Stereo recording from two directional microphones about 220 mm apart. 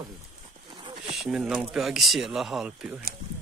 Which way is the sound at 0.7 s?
20° right (ahead or behind).